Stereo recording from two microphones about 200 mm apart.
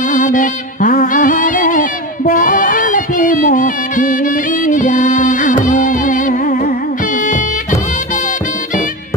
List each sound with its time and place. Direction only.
0.1 s music: 40° left (ahead or behind)